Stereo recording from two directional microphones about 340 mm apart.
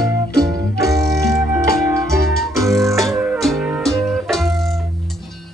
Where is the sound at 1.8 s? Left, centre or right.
Centre.